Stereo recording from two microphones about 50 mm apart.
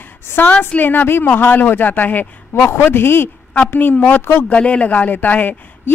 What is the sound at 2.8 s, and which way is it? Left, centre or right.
Speech, left.